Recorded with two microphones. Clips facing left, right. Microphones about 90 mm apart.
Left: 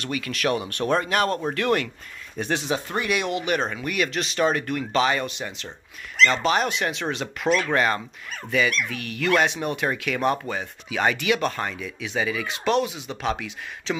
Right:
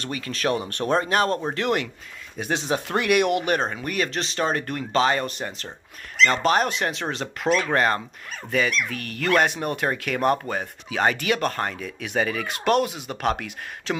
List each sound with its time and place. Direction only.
0.0 s speech: 35° right (ahead or behind)
2.9 s speech: 65° right (ahead or behind)
3.5 s speech: 35° right (ahead or behind)